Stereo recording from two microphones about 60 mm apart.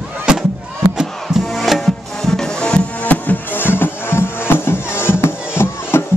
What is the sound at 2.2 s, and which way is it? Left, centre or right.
Music, centre.